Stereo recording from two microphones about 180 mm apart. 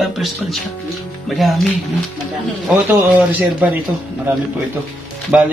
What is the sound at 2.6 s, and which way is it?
Speech, 10° right (ahead or behind).